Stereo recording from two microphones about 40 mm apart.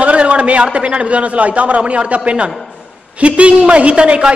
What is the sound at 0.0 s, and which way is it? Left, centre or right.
A man's voice, right.